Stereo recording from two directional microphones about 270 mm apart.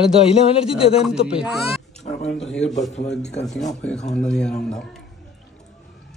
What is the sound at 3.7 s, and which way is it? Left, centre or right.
Speech, centre.